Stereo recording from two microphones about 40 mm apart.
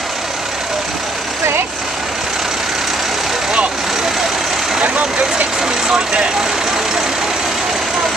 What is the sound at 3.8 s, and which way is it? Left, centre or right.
Vehicle, centre.